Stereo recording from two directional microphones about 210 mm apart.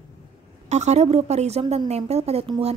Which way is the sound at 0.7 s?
35° right (ahead or behind).